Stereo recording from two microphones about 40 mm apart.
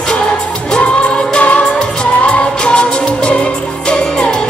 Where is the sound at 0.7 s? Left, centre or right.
Left.